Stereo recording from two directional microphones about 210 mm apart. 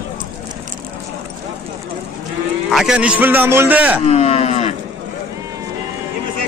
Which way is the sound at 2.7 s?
5° right (ahead or behind).